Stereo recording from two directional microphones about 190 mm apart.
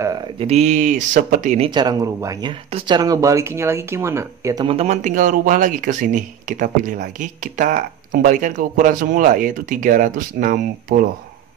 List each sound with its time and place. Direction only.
0.4 s speech: 35° right (ahead or behind)
1.7 s speech: 20° right (ahead or behind)
4.6 s speech: 35° right (ahead or behind)